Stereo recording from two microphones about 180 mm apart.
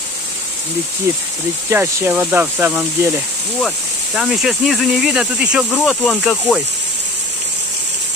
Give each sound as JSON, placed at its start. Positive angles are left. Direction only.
{"t": 1.1, "sound": "speech", "side_deg": -15}